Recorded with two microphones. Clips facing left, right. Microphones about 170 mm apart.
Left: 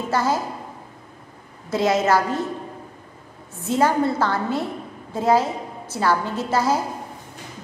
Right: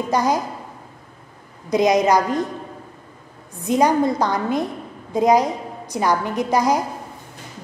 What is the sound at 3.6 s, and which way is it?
A woman's voice, 15° right (ahead or behind).